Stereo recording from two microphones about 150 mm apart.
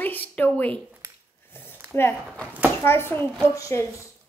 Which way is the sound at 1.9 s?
15° left (ahead or behind).